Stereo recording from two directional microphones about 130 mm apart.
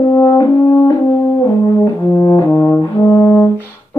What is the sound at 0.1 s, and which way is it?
French horn, 25° left (ahead or behind).